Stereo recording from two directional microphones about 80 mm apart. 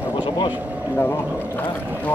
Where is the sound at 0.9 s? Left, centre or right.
Left.